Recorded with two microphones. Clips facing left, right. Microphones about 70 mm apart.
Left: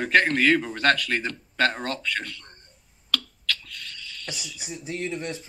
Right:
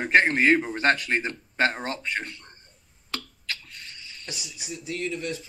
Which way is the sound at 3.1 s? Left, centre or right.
Right.